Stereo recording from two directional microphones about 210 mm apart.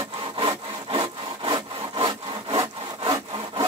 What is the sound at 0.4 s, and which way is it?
Sawing, 25° right (ahead or behind).